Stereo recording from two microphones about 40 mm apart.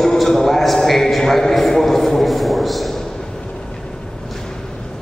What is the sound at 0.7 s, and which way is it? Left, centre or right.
Speech, centre.